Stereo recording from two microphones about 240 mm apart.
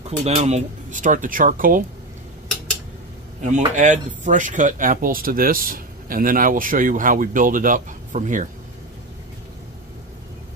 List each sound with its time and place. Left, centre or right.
0.2 s speech: right
3.4 s speech: right